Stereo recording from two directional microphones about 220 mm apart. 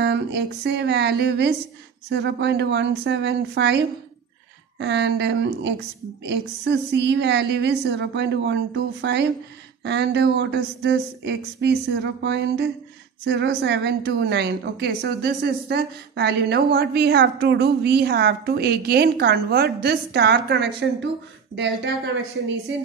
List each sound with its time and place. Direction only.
0.0 s a woman's voice: 50° right (ahead or behind)